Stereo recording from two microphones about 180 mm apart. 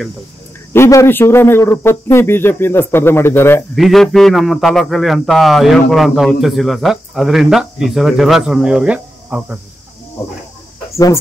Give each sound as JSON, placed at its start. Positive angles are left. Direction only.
{"t": 0.7, "sound": "speech", "side_deg": 15}
{"t": 3.7, "sound": "a man's voice", "side_deg": 0}